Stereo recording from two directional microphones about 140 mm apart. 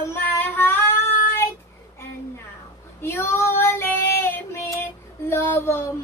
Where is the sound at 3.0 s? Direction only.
20° left (ahead or behind).